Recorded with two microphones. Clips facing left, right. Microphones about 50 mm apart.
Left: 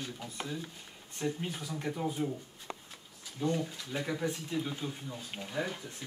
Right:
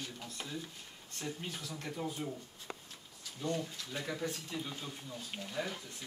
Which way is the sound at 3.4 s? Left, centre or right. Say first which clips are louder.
Left 4 dB; centre.